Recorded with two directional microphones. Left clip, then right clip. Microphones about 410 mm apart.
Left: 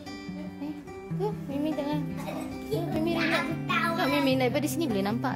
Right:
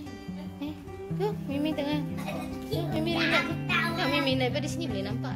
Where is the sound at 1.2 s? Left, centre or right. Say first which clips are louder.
Right 1 dB; centre.